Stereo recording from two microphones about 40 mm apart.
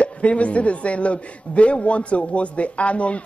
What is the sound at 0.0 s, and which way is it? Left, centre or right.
Speech, left.